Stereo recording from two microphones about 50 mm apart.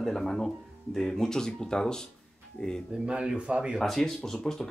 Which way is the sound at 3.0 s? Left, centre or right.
Centre.